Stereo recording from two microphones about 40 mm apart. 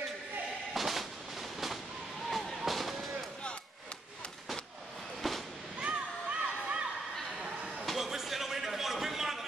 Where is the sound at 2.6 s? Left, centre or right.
Centre.